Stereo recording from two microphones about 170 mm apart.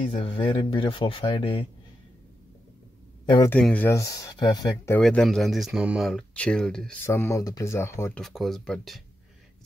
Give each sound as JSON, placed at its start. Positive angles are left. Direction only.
{"t": 0.1, "sound": "speech", "side_deg": 30}
{"t": 3.4, "sound": "speech", "side_deg": 10}
{"t": 4.9, "sound": "speech", "side_deg": 5}
{"t": 7.1, "sound": "speech", "side_deg": 15}
{"t": 8.2, "sound": "speech", "side_deg": 0}